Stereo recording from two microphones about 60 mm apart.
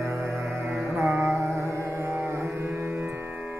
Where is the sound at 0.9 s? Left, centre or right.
Right.